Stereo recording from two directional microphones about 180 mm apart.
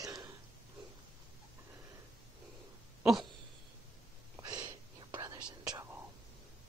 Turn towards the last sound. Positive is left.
turn(degrees=-15)  # may be behind; listen again after turning